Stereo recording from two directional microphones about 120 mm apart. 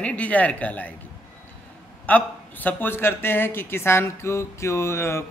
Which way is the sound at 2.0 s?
15° left (ahead or behind).